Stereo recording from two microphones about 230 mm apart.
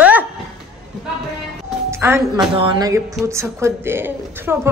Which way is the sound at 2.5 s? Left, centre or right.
Right.